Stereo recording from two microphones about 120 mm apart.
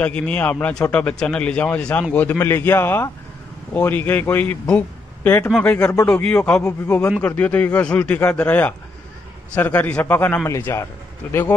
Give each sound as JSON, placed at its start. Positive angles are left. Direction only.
{"t": 0.0, "sound": "a man's voice", "side_deg": 10}